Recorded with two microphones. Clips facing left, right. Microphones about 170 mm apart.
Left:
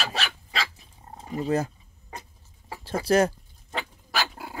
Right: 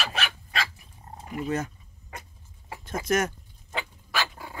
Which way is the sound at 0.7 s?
25° left (ahead or behind).